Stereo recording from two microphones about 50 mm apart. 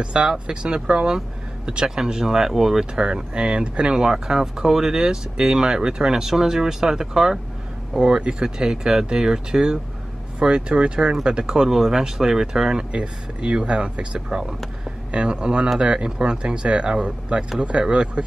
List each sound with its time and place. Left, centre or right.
0.0 s speech: centre